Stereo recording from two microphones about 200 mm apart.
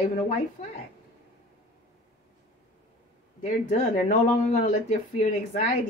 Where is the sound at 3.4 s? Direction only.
40° left (ahead or behind).